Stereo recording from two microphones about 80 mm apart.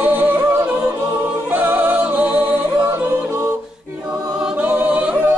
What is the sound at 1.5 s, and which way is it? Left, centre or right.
Singing, right.